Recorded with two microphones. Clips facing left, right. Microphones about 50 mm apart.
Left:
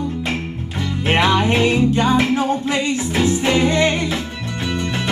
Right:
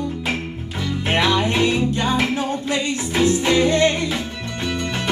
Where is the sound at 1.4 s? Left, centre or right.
Left.